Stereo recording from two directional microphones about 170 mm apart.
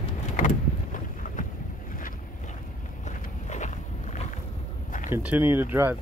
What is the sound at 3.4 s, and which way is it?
Vehicle, 45° left (ahead or behind).